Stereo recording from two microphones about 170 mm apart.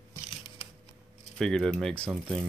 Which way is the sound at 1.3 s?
5° left (ahead or behind).